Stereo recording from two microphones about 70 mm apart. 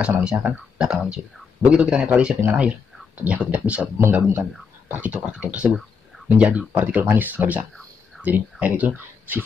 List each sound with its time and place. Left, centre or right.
0.0 s a man's voice: centre
5.7 s a sound: centre
6.2 s speech: centre